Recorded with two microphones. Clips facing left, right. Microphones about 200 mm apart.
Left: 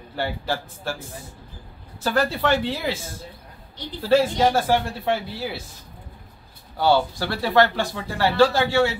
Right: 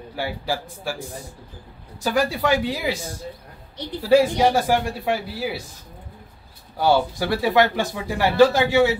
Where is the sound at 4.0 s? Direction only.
15° right (ahead or behind).